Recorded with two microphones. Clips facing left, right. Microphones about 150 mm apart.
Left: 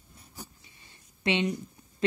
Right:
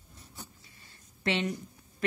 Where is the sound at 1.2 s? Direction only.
20° left (ahead or behind).